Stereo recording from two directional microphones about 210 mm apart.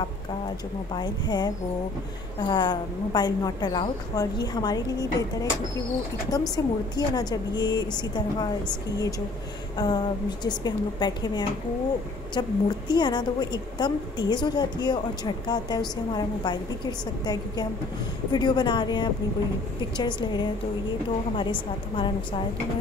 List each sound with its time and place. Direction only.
0.9 s a woman's voice: 20° left (ahead or behind)
6.5 s a woman's voice: 20° left (ahead or behind)
9.8 s a woman's voice: 20° left (ahead or behind)